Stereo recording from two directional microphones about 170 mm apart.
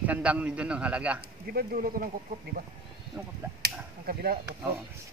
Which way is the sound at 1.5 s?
55° right (ahead or behind).